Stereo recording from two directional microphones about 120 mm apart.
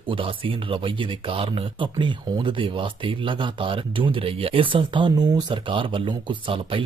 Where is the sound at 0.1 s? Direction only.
45° right (ahead or behind).